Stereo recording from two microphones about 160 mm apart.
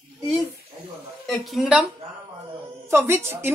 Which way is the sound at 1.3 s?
Centre (ahead or behind).